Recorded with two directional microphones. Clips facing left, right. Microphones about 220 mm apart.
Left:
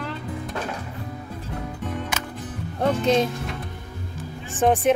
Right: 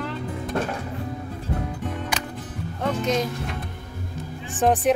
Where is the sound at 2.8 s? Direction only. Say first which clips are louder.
Left 4 dB; 30° left (ahead or behind).